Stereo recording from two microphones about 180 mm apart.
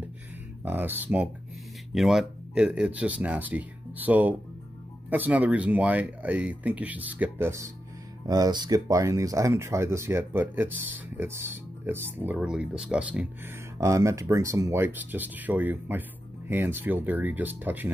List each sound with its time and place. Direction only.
0.7 s speech: 10° right (ahead or behind)
13.7 s speech: 15° right (ahead or behind)